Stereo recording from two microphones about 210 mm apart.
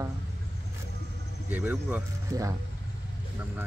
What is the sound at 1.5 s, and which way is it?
Speech, 10° right (ahead or behind).